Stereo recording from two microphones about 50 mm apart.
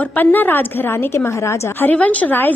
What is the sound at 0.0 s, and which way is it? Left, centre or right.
Speech, left.